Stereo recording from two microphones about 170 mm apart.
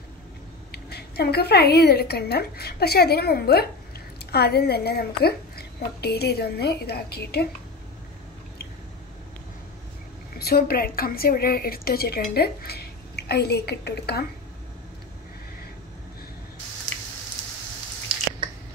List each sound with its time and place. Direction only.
0.7 s a woman's voice: 70° left (ahead or behind)
10.4 s a woman's voice: 60° left (ahead or behind)